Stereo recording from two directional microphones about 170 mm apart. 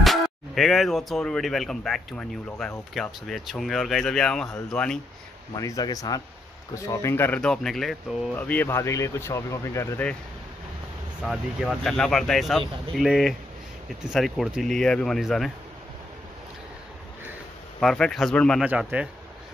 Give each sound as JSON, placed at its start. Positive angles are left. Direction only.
{"t": 0.0, "sound": "speech", "side_deg": 0}
{"t": 5.6, "sound": "speech", "side_deg": 20}
{"t": 11.2, "sound": "speech", "side_deg": 0}
{"t": 17.7, "sound": "speech", "side_deg": 5}
{"t": 18.6, "sound": "speech", "side_deg": -5}